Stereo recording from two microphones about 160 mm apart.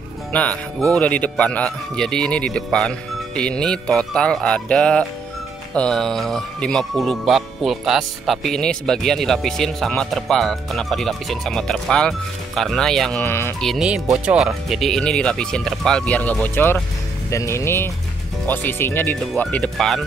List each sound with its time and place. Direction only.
0.3 s speech: 10° left (ahead or behind)
13.2 s speech: 15° left (ahead or behind)
13.6 s speech: centre (ahead or behind)